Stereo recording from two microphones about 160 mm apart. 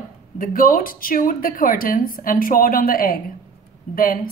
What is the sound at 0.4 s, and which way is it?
Speech, 60° left (ahead or behind).